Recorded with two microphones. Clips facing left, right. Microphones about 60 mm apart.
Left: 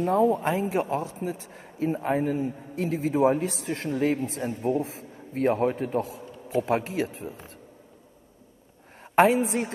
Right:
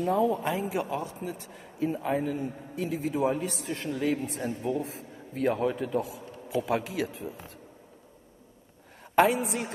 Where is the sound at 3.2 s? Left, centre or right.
Left.